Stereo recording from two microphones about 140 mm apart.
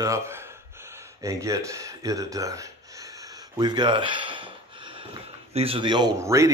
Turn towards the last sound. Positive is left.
turn(degrees=-20)  # may be behind; listen again after turning